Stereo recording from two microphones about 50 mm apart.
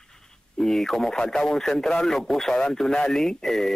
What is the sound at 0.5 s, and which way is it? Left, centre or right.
Speech, centre.